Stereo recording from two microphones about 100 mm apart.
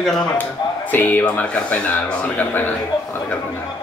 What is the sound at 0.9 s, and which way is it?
Speech, 15° left (ahead or behind).